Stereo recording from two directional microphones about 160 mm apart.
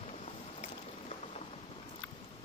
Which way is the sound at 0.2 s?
40° left (ahead or behind).